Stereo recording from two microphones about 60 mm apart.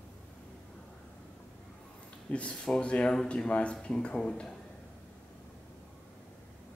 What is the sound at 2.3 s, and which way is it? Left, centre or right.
Speech, left.